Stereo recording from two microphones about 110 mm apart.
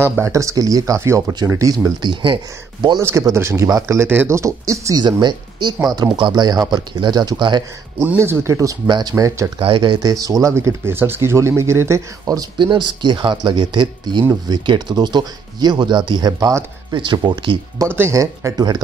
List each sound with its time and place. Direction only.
0.1 s speech: 25° right (ahead or behind)
2.0 s speech: 45° right (ahead or behind)
3.0 s speech: 25° right (ahead or behind)
5.0 s speech: 45° right (ahead or behind)
8.2 s speech: 25° right (ahead or behind)
8.8 s speech: 40° right (ahead or behind)
9.1 s speech: 30° right (ahead or behind)
9.6 s speech: 50° right (ahead or behind); by 12.4 s 30° right (ahead or behind)
12.5 s speech: 45° right (ahead or behind)
16.9 s speech: 45° right (ahead or behind)
17.8 s speech: 20° right (ahead or behind)